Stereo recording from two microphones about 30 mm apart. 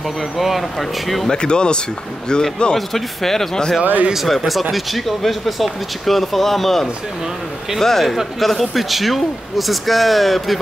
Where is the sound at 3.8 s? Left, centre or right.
Right.